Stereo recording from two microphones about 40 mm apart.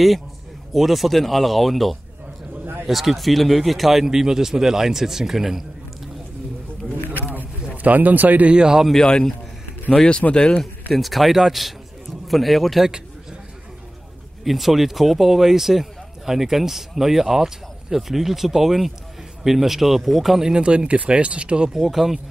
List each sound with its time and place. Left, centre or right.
0.7 s speech: centre
7.2 s a sound: right
8.5 s speech: right
9.0 s a man's voice: centre
10.6 s speech: centre
14.4 s speech: centre
20.5 s speech: right
21.7 s speech: centre